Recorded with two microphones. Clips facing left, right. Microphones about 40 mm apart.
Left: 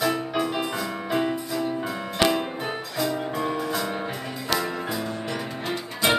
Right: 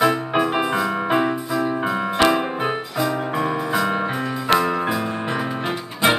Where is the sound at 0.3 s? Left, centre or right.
Right.